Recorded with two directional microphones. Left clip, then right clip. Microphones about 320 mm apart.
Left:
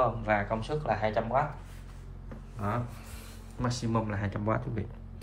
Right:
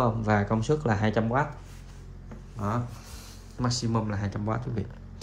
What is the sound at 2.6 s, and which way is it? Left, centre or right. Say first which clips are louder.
Speech: right 2 dB; centre.